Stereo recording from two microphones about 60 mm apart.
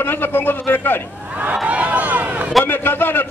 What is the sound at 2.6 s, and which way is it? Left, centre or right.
Speech, left.